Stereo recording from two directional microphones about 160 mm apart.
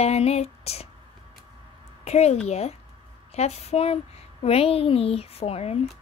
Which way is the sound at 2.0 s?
40° left (ahead or behind).